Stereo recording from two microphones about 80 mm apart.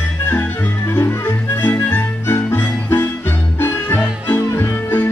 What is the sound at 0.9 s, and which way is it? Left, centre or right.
Music, left.